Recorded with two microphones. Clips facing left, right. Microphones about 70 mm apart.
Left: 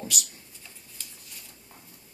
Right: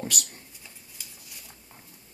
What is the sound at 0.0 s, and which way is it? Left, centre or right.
Speech, right.